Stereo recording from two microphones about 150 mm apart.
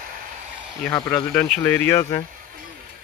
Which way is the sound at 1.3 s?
10° left (ahead or behind).